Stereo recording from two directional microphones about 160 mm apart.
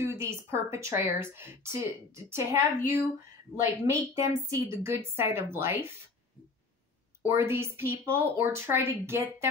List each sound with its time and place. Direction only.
0.0 s speech: 15° right (ahead or behind)
7.2 s speech: 15° right (ahead or behind)